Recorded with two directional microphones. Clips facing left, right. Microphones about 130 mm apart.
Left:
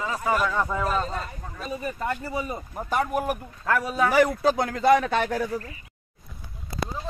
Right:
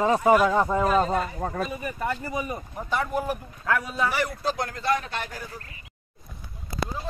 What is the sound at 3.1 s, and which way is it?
Speech, 10° left (ahead or behind).